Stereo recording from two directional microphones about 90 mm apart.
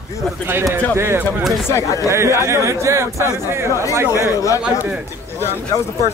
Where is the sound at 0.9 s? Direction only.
25° right (ahead or behind).